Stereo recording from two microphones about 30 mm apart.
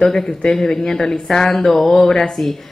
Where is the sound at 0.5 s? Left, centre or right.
Centre.